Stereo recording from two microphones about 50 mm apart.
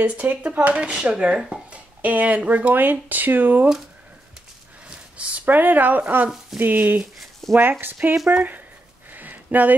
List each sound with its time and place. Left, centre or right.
0.0 s speech: right
0.7 s speech: right
4.8 s a sound: right
5.5 s speech: right
7.4 s speech: centre
7.8 s speech: right
9.1 s a sound: right